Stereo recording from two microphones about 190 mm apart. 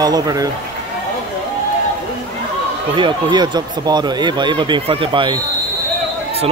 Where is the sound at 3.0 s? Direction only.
25° right (ahead or behind).